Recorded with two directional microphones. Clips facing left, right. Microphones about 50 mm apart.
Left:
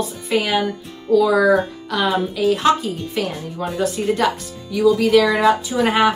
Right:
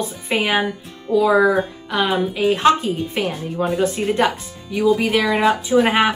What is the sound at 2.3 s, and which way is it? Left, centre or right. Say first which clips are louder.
A woman's voice: right 2 dB; right.